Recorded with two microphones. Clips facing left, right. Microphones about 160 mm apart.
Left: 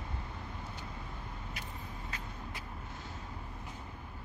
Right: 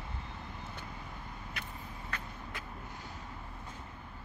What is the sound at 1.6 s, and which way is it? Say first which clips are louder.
Vehicle: right 1 dB; 65° right (ahead or behind).